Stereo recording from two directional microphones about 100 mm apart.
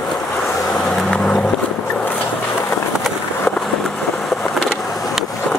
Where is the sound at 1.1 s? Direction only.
10° left (ahead or behind).